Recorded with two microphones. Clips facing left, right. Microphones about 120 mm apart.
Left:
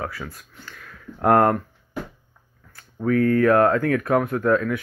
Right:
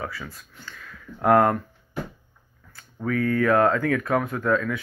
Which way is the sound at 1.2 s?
20° left (ahead or behind).